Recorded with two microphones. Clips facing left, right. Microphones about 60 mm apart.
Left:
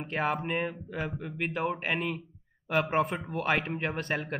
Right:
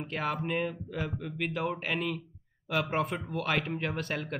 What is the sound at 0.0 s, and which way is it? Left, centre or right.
Speech, left.